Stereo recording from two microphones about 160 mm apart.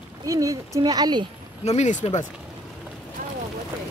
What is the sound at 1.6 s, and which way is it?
Speech, 45° left (ahead or behind).